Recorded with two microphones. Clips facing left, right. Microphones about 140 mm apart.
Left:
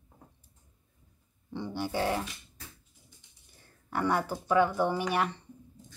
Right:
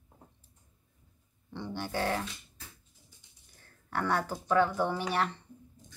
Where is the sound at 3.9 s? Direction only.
10° left (ahead or behind).